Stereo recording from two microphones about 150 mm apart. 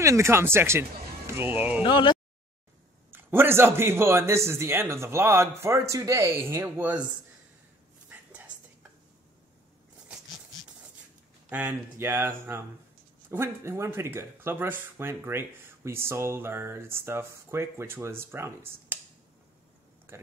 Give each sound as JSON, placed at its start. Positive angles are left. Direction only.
{"t": 0.0, "sound": "speech", "side_deg": -20}
{"t": 1.8, "sound": "speech", "side_deg": 35}
{"t": 3.1, "sound": "speech", "side_deg": -15}
{"t": 8.1, "sound": "a sound", "side_deg": -10}
{"t": 11.4, "sound": "speech", "side_deg": -15}